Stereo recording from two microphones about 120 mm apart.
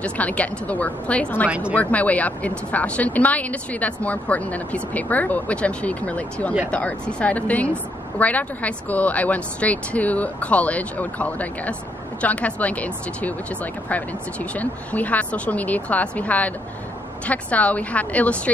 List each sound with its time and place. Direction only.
0.0 s a woman's voice: 10° left (ahead or behind)
1.5 s a woman's voice: 10° right (ahead or behind)
1.8 s a woman's voice: 10° left (ahead or behind)